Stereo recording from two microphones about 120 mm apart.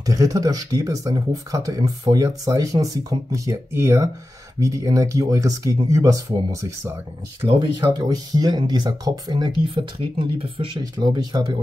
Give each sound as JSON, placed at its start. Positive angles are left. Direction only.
{"t": 0.0, "sound": "speech", "side_deg": -30}
{"t": 9.9, "sound": "speech", "side_deg": -50}
{"t": 10.8, "sound": "speech", "side_deg": -35}